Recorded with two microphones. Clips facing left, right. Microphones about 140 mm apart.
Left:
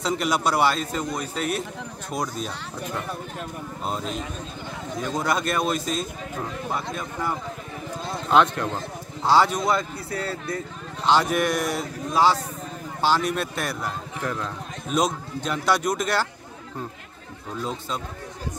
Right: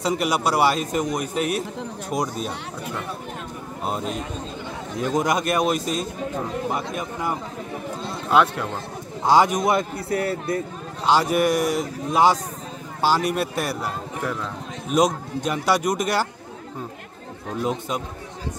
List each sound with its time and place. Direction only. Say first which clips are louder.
0.0 s speech: right 2 dB; 10° right (ahead or behind)
3.8 s speech: right 3 dB; 5° right (ahead or behind); by 10.6 s 25° right (ahead or behind)
11.1 s speech: right 2 dB; 10° right (ahead or behind)
17.6 s speech: right 5 dB; 15° right (ahead or behind)